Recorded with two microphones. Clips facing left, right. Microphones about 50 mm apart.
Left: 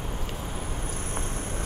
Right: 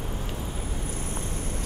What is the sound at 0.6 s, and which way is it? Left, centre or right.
Vehicle, left.